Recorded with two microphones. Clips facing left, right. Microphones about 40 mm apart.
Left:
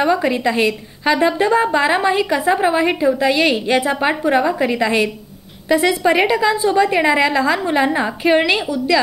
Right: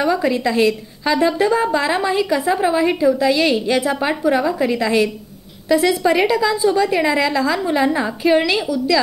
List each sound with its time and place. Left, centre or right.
0.0 s a woman's voice: left